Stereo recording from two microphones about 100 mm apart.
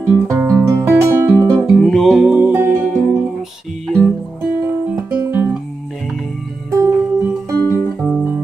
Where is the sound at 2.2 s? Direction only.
10° right (ahead or behind).